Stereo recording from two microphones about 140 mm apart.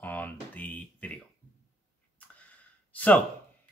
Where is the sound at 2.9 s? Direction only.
10° left (ahead or behind).